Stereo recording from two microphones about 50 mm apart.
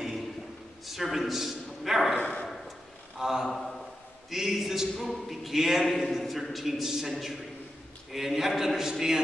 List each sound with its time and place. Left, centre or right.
0.8 s a man's voice: centre
2.1 s speech: left
3.2 s a man's voice: centre